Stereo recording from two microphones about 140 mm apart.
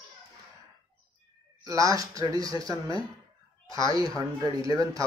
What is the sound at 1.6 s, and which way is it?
Speech, 25° right (ahead or behind).